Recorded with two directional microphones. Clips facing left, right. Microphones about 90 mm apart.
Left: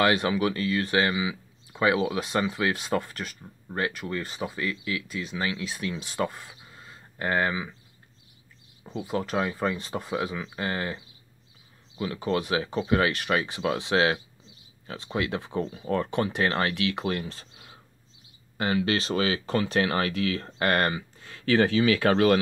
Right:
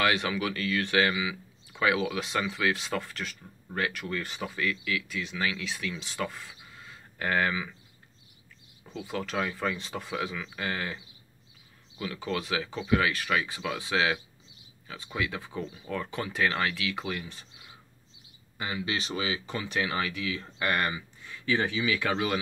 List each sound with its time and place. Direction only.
0.0 s speech: 40° left (ahead or behind)
3.7 s speech: 30° left (ahead or behind)
9.1 s speech: 35° left (ahead or behind)
12.0 s speech: 35° left (ahead or behind)
13.7 s speech: 55° left (ahead or behind)
15.1 s speech: 50° left (ahead or behind)
18.6 s speech: 60° left (ahead or behind)